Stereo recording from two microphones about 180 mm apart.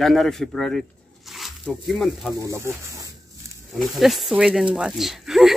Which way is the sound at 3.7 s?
Centre (ahead or behind).